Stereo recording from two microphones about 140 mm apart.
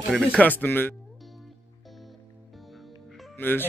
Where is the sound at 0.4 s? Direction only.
10° left (ahead or behind).